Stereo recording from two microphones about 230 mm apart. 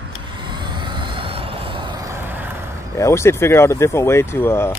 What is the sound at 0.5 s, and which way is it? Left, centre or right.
Vehicle, centre.